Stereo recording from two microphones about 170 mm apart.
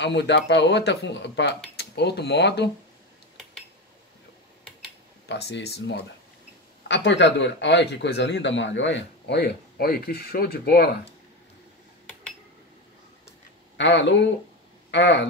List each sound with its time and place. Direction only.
0.0 s speech: 90° left
1.8 s speech: 75° left (ahead or behind)
5.3 s a man's voice: 80° left
13.7 s speech: 90° left